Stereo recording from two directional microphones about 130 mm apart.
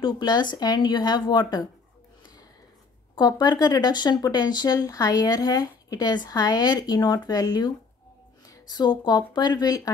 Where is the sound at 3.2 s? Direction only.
30° left (ahead or behind).